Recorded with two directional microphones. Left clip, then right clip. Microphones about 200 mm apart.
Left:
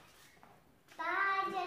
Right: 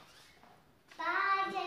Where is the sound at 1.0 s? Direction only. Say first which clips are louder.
Right 2 dB; 25° left (ahead or behind).